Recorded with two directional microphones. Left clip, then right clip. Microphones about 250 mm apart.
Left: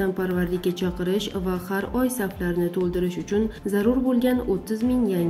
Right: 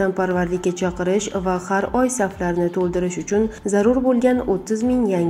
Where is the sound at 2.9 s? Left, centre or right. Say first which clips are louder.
Right 4 dB; centre.